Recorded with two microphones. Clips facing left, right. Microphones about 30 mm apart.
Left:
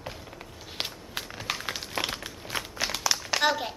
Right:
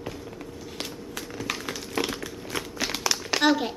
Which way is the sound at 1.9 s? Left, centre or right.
Centre.